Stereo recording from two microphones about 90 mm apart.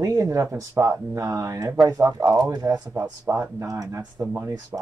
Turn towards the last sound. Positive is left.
turn(degrees=-30)  # may be behind; listen again after turning